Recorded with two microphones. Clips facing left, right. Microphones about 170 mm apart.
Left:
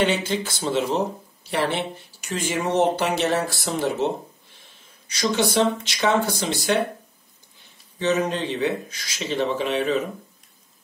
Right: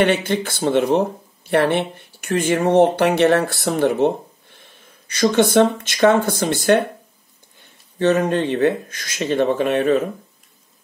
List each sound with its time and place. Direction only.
0.0 s speech: 60° right (ahead or behind)
8.0 s speech: 55° right (ahead or behind)